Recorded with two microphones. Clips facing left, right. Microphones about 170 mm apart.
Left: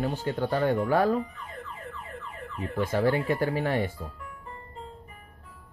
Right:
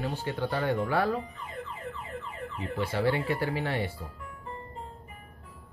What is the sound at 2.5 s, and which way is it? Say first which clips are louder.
Speech: left 4 dB; 45° left (ahead or behind).